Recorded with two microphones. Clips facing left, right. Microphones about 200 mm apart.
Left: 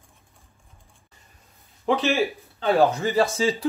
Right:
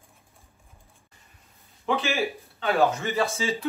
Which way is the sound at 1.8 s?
30° left (ahead or behind).